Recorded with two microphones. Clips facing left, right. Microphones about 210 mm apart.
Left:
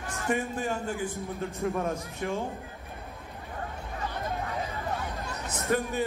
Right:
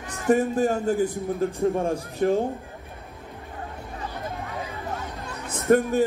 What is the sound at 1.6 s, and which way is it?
Speech, 30° right (ahead or behind).